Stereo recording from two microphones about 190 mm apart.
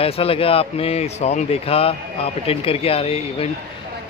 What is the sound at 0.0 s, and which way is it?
A man's voice, 30° left (ahead or behind).